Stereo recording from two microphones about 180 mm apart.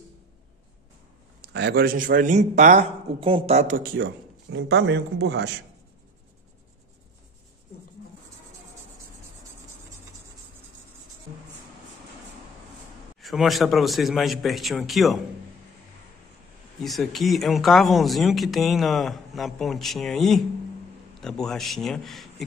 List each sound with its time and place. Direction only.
1.4 s a man's voice: 70° right (ahead or behind)
13.2 s speech: centre (ahead or behind)
16.8 s speech: centre (ahead or behind)